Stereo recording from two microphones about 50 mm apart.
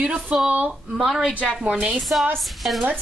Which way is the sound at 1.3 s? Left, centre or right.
Left.